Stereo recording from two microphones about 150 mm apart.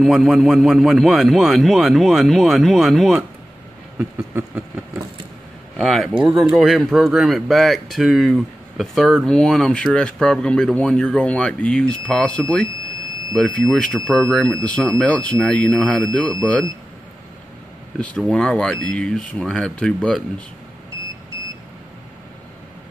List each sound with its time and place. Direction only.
0.0 s speech: centre (ahead or behind)
4.0 s a sound: 15° right (ahead or behind)
5.8 s speech: centre (ahead or behind)
17.9 s speech: 5° left (ahead or behind)